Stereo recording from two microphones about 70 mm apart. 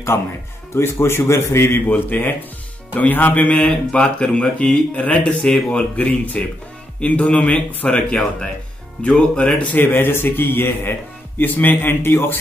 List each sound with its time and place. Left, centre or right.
0.1 s speech: left
0.7 s a man's voice: left
1.9 s speech: left